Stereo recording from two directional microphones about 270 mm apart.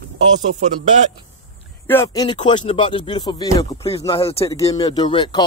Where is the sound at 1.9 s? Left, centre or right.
Centre.